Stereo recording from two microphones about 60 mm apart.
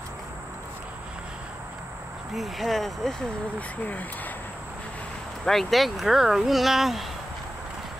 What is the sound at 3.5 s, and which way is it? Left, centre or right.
Speech, left.